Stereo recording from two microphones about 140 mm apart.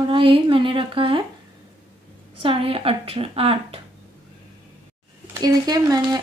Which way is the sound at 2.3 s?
40° right (ahead or behind).